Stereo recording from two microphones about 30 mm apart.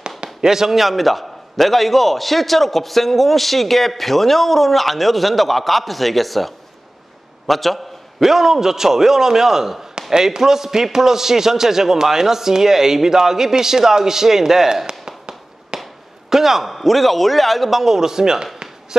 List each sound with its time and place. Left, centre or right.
0.4 s a man's voice: centre
7.4 s a sound: centre
8.3 s a man's voice: centre
14.9 s tap: right
16.3 s a man's voice: centre
16.7 s a man's voice: centre; by 18.9 s right